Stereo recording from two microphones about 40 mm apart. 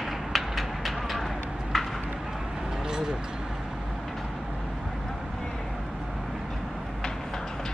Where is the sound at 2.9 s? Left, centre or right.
Centre.